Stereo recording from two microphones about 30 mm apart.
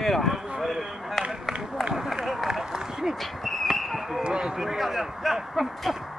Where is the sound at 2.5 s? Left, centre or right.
Right.